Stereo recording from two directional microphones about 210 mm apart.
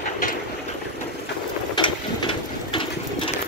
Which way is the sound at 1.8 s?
25° left (ahead or behind).